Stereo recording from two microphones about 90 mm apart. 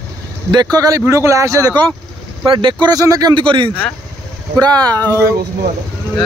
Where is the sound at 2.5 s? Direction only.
65° right (ahead or behind).